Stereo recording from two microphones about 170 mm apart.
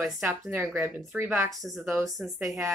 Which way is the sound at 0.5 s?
15° right (ahead or behind).